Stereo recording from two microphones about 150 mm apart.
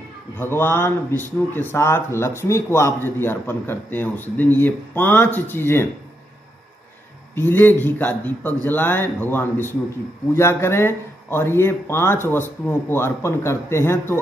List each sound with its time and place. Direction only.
0.4 s speech: 15° left (ahead or behind)
7.3 s speech: 15° left (ahead or behind)